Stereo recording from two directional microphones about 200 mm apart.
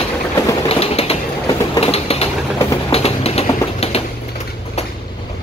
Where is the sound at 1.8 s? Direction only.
30° left (ahead or behind).